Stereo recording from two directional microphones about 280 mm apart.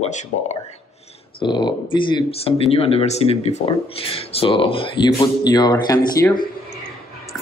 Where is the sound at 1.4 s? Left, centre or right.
Centre.